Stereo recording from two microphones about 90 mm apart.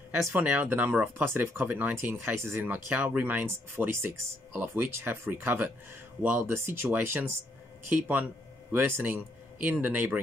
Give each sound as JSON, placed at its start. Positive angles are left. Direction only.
{"t": 0.3, "sound": "speech", "side_deg": -20}